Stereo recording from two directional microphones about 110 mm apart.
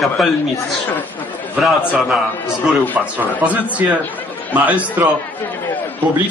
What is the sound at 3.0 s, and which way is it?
Speech, 15° right (ahead or behind).